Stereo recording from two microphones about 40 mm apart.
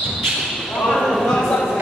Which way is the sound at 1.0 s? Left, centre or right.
Centre.